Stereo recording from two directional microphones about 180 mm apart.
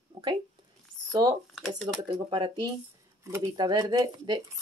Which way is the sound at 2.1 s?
25° right (ahead or behind).